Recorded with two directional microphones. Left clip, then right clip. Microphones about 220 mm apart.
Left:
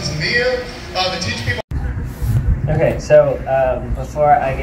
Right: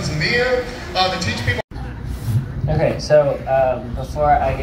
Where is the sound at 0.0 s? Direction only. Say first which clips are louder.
Left 1 dB; centre (ahead or behind).